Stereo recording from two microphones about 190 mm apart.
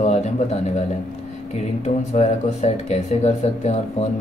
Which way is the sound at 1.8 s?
35° left (ahead or behind).